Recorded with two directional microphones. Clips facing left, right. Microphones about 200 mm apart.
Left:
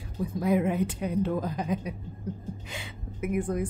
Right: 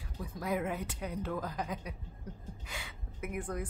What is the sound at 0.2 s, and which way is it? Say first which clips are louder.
A woman's voice: left 9 dB; 20° left (ahead or behind).